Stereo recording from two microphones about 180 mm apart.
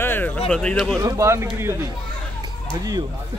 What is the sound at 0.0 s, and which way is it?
Music, 10° left (ahead or behind).